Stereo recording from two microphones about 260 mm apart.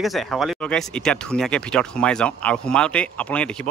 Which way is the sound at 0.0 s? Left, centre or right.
Centre.